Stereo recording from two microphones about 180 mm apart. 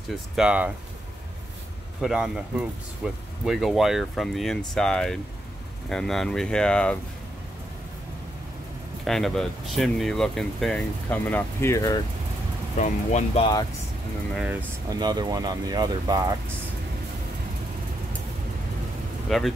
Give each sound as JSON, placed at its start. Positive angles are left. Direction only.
{"t": 0.4, "sound": "speech", "side_deg": -5}
{"t": 2.0, "sound": "speech", "side_deg": 0}
{"t": 9.0, "sound": "speech", "side_deg": 0}
{"t": 12.7, "sound": "speech", "side_deg": 40}
{"t": 14.3, "sound": "speech", "side_deg": -5}
{"t": 14.9, "sound": "speech", "side_deg": -25}
{"t": 19.2, "sound": "speech", "side_deg": 0}